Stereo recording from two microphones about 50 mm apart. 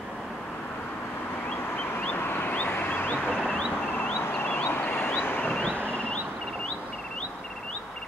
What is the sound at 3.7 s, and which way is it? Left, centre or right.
Vehicle, left.